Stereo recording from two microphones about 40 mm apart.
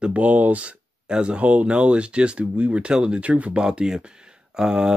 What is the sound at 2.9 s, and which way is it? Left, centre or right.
Speech, right.